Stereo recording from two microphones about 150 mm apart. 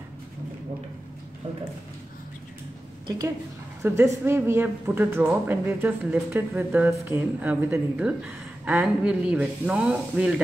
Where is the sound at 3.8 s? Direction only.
20° right (ahead or behind).